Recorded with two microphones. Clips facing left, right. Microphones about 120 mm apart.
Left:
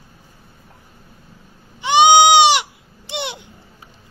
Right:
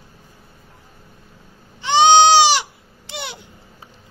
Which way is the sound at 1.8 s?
15° left (ahead or behind).